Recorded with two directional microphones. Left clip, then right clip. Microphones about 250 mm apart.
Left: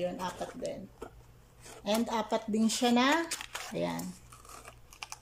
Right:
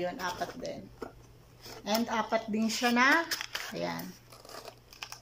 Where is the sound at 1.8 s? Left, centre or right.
Centre.